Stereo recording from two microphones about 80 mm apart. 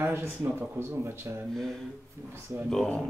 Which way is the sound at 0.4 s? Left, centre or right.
Right.